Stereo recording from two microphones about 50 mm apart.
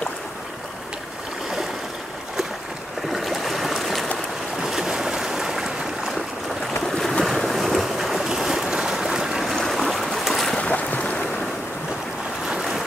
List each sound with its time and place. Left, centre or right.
3.1 s boat: centre
6.7 s boat: centre
8.9 s stream: centre
10.1 s boat: centre
10.6 s boat: left